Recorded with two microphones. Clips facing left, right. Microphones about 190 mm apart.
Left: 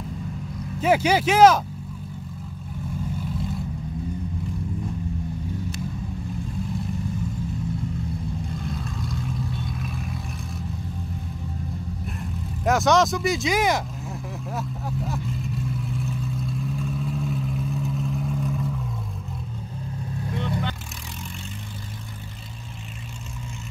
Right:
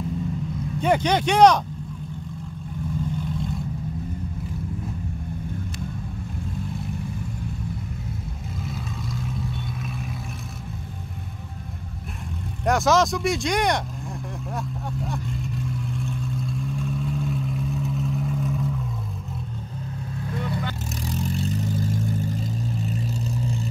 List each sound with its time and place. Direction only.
0.7 s speech: 5° left (ahead or behind)
8.6 s vehicle: centre (ahead or behind)
12.6 s speech: centre (ahead or behind)
14.5 s vehicle: centre (ahead or behind)
21.1 s vehicle: 35° right (ahead or behind)